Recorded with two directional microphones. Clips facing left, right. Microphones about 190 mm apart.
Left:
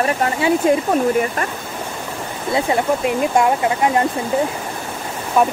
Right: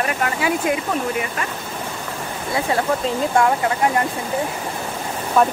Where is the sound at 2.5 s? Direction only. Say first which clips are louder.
Left 3 dB; 20° left (ahead or behind).